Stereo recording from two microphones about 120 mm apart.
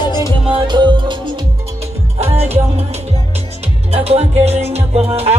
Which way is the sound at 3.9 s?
60° right (ahead or behind).